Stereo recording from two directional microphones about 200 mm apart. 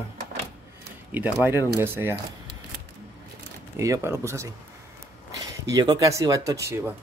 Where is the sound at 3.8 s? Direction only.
15° right (ahead or behind).